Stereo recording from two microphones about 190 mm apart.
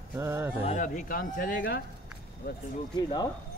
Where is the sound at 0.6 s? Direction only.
40° left (ahead or behind).